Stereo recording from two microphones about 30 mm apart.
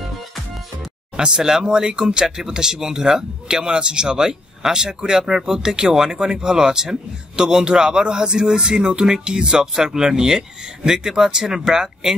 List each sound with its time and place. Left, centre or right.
1.1 s speech: right